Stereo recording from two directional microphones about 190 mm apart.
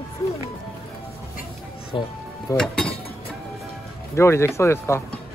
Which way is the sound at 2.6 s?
5° left (ahead or behind).